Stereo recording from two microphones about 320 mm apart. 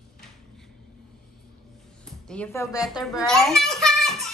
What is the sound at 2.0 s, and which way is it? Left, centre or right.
Music, centre.